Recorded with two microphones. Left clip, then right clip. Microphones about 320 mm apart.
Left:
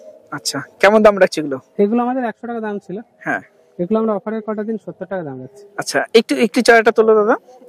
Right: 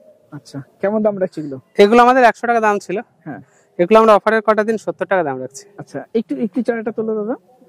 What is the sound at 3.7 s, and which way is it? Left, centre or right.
Speech, centre.